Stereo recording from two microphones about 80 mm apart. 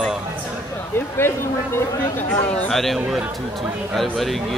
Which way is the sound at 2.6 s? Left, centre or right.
Centre.